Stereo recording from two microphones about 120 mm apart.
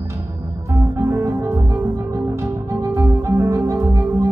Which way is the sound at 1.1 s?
25° right (ahead or behind).